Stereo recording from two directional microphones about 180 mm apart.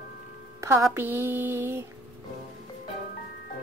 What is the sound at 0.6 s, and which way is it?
Speech, 15° right (ahead or behind).